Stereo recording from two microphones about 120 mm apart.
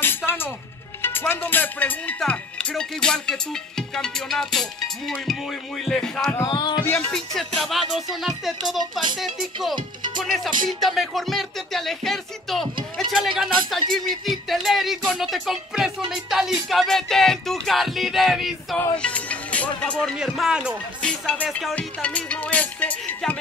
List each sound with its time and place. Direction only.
0.0 s music: 15° left (ahead or behind)
6.4 s music: 40° left (ahead or behind)
7.1 s music: centre (ahead or behind)
18.9 s speech: 10° left (ahead or behind)
20.2 s music: 5° right (ahead or behind)
21.0 s music: 5° left (ahead or behind)